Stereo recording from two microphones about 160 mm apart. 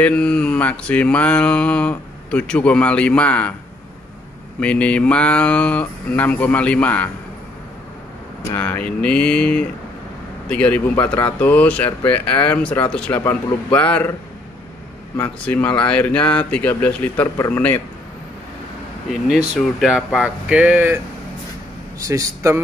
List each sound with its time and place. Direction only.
0.0 s mantra: 5° left (ahead or behind)
4.6 s mantra: 5° left (ahead or behind)
8.5 s mantra: 10° left (ahead or behind)
15.1 s mantra: 10° left (ahead or behind)
19.2 s speech: 5° right (ahead or behind)
22.0 s a man's voice: 20° right (ahead or behind)